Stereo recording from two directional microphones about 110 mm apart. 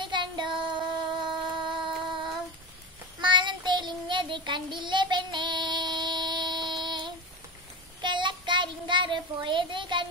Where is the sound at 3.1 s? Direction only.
45° right (ahead or behind).